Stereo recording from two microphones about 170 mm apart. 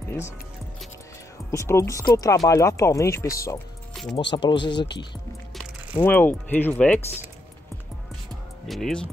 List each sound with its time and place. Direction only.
1.5 s speech: 15° left (ahead or behind)
3.9 s music: centre (ahead or behind)
4.3 s speech: 30° left (ahead or behind)
6.0 s speech: 10° left (ahead or behind)
8.6 s speech: centre (ahead or behind)